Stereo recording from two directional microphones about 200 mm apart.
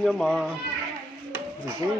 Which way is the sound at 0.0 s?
Centre (ahead or behind).